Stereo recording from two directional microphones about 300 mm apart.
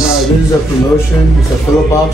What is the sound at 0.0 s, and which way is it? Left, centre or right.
Music, centre.